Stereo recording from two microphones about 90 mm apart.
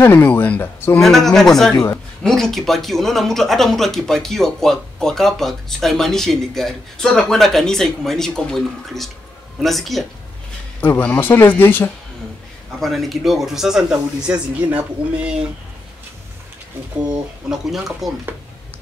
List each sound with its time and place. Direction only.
0.0 s speech: 20° left (ahead or behind)
0.9 s speech: 5° left (ahead or behind)
10.8 s speech: 20° left (ahead or behind)
12.8 s speech: centre (ahead or behind)
17.1 s speech: 5° right (ahead or behind)